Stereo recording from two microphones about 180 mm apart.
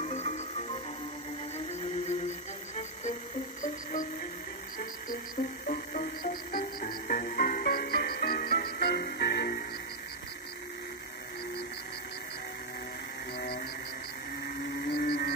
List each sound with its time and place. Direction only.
0.0 s music: 40° left (ahead or behind)
2.7 s music: 40° left (ahead or behind)
4.7 s music: 50° left (ahead or behind)
13.4 s music: 60° left (ahead or behind)
14.4 s a sound: 60° left (ahead or behind)